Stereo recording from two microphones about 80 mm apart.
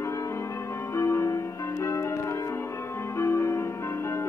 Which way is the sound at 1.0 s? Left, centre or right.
Left.